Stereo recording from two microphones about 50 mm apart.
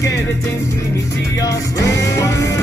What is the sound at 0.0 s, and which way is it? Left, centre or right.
Music, left.